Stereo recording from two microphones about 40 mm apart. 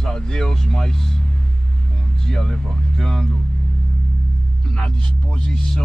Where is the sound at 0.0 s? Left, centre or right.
Centre.